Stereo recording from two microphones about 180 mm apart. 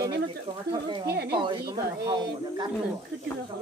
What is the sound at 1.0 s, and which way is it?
Speech, 65° right (ahead or behind).